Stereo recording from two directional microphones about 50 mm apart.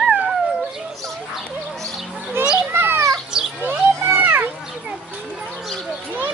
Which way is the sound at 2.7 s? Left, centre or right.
Right.